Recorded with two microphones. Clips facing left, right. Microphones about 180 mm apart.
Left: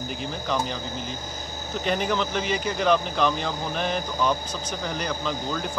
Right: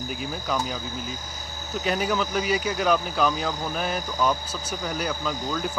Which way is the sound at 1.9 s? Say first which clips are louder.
Even; 5° right (ahead or behind).